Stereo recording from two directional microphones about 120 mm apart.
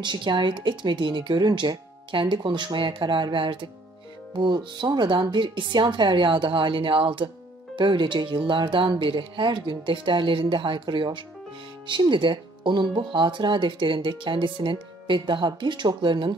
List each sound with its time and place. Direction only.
0.0 s speech: 40° right (ahead or behind)